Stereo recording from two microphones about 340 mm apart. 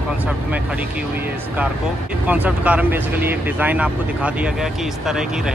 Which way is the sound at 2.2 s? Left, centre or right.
Centre.